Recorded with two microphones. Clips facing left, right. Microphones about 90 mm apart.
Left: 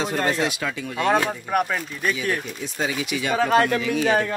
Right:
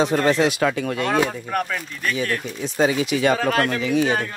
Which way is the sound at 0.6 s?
55° right (ahead or behind).